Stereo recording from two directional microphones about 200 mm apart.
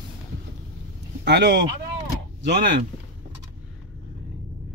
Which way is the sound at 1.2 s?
60° right (ahead or behind).